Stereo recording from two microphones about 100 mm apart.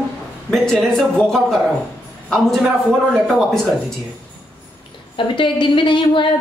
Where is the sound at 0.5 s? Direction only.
5° left (ahead or behind).